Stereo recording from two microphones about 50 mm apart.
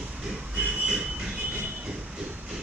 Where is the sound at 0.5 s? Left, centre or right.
Right.